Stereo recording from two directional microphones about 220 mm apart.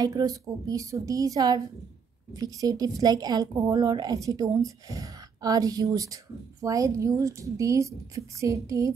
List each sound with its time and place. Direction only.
0.0 s a woman's voice: 15° right (ahead or behind)